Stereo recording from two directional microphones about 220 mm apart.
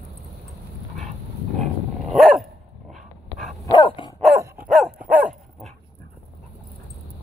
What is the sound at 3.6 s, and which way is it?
Dog, 20° left (ahead or behind).